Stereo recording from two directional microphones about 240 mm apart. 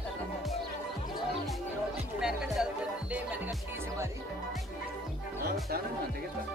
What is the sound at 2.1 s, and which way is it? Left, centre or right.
Music, centre.